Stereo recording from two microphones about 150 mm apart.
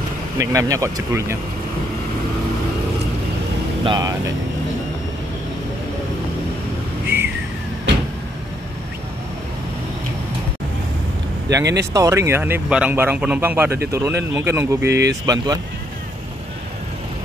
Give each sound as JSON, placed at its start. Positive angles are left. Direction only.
{"t": 0.4, "sound": "speech", "side_deg": -20}
{"t": 3.8, "sound": "speech", "side_deg": -30}
{"t": 11.5, "sound": "speech", "side_deg": -20}